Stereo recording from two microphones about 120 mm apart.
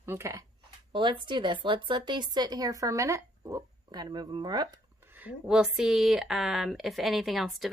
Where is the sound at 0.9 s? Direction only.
40° right (ahead or behind).